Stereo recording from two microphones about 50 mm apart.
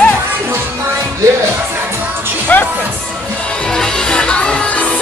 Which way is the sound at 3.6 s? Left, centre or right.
Centre.